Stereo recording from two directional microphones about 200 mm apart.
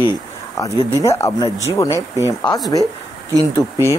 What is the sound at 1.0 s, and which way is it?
Speech, 15° left (ahead or behind).